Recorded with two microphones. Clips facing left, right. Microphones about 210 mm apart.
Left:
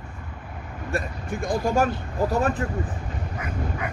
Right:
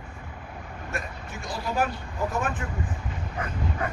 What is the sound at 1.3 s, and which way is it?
Speech, 50° left (ahead or behind).